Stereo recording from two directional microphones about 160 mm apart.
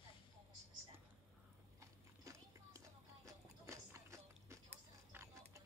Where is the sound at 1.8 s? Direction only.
20° right (ahead or behind).